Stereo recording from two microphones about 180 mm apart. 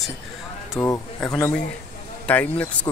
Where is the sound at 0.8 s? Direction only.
15° left (ahead or behind).